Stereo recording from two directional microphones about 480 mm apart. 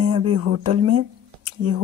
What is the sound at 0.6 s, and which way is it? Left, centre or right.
Speech, right.